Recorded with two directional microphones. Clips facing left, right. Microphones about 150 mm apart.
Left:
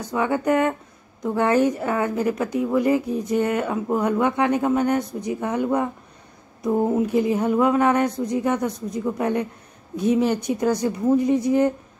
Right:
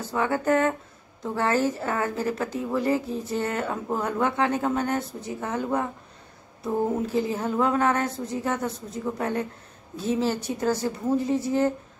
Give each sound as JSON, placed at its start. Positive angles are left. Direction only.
{"t": 0.1, "sound": "a woman's voice", "side_deg": 15}